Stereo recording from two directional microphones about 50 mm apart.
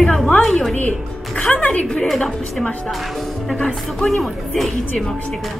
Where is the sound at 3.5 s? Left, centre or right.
Left.